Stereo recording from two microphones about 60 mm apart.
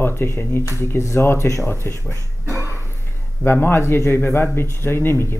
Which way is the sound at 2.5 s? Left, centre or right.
Right.